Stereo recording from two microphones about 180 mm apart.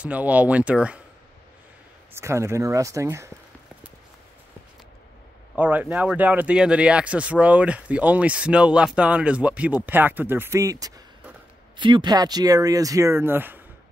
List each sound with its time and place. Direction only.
0.0 s speech: 5° right (ahead or behind)
2.1 s speech: 15° right (ahead or behind)
5.6 s speech: 10° right (ahead or behind)